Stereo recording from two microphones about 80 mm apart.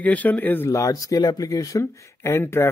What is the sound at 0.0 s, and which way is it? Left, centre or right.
Speech, centre.